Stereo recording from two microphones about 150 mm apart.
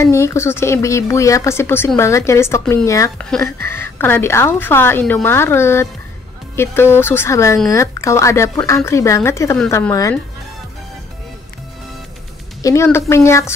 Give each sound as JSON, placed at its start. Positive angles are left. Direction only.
{"t": 0.0, "sound": "a woman's voice", "side_deg": 20}
{"t": 12.6, "sound": "speech", "side_deg": 20}